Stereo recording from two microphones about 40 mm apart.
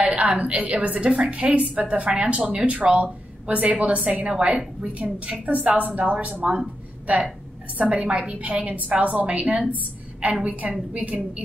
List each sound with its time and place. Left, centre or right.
0.0 s a woman's voice: right
6.4 s speech: right
7.1 s speech: right